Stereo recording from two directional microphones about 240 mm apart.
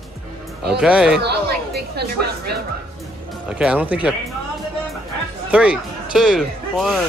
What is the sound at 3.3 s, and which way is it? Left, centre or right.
Speech, centre.